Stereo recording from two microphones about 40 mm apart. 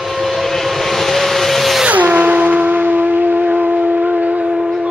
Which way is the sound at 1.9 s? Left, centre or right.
Right.